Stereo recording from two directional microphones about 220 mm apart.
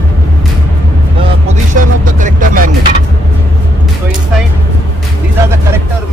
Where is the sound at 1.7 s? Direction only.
35° right (ahead or behind).